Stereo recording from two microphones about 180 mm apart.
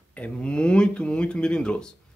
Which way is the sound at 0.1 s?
5° left (ahead or behind).